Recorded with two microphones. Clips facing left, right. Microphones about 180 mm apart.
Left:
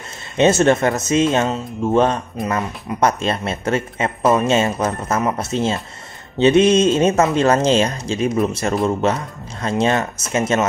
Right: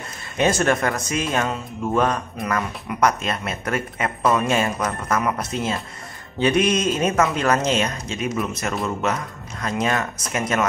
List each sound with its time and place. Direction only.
0.4 s speech: 25° left (ahead or behind)